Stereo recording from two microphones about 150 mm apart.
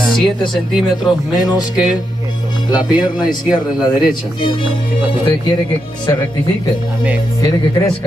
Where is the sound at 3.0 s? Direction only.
30° left (ahead or behind).